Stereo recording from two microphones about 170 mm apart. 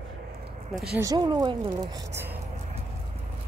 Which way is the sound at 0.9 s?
20° right (ahead or behind).